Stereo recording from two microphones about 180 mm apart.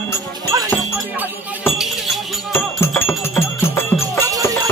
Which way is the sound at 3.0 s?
15° left (ahead or behind).